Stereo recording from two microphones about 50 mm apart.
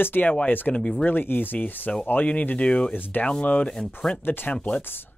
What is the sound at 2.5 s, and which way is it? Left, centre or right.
Speech, centre.